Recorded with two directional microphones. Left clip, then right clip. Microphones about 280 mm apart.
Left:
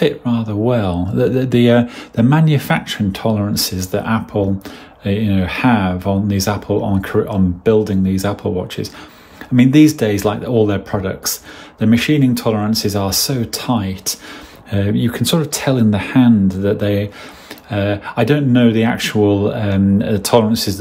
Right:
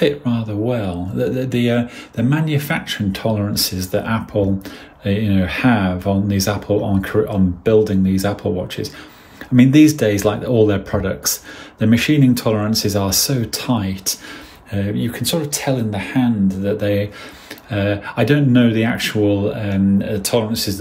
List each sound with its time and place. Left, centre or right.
0.0 s speech: centre